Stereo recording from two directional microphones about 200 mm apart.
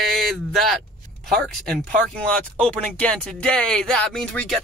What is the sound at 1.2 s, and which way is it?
Speech, centre (ahead or behind).